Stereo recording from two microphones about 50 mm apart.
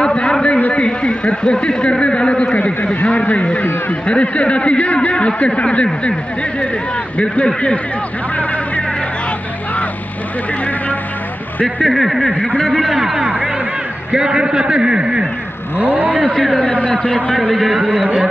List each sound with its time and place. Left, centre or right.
0.0 s a sound: centre
0.7 s a man's voice: centre
7.2 s a man's voice: left
11.8 s speech: centre
12.3 s a man's voice: centre
15.8 s speech: right
16.8 s a man's voice: left
17.5 s speech: centre